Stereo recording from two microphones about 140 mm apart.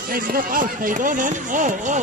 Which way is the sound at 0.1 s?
90° right.